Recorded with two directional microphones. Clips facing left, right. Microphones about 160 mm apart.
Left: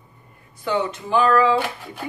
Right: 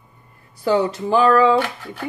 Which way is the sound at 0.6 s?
35° right (ahead or behind).